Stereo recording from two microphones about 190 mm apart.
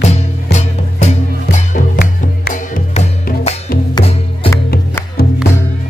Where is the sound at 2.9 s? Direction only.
35° left (ahead or behind).